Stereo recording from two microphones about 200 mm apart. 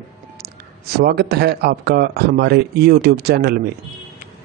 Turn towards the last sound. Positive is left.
turn(degrees=-55)  # may be behind; listen again after turning